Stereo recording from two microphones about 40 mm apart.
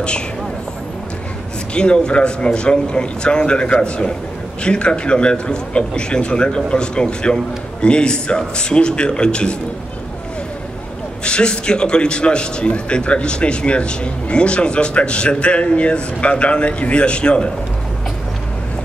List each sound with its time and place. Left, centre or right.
1.7 s a man's voice: left
11.2 s a man's voice: left